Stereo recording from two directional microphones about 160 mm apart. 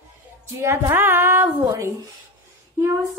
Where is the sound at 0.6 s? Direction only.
15° right (ahead or behind).